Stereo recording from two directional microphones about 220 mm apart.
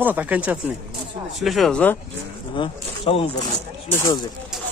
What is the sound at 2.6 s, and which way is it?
Speech, 25° left (ahead or behind).